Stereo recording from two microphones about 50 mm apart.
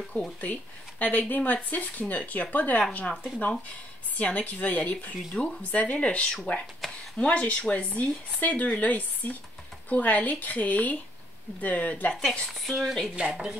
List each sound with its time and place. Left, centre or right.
0.4 s speech: left
4.2 s speech: left; by 6.6 s centre
6.8 s a sound: centre
7.2 s speech: left
12.1 s a woman's voice: centre
13.3 s speech: centre